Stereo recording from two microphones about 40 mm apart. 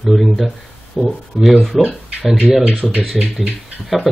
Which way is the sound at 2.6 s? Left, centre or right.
Right.